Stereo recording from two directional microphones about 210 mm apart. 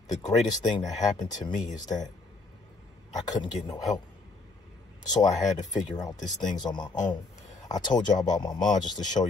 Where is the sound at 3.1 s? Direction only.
20° left (ahead or behind).